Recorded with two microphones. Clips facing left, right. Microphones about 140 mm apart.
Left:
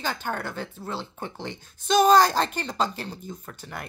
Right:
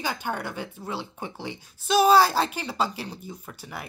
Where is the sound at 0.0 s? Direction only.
10° right (ahead or behind).